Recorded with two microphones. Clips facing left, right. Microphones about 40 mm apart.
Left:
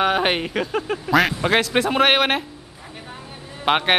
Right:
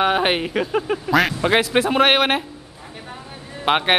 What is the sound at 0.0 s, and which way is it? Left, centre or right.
Speech, centre.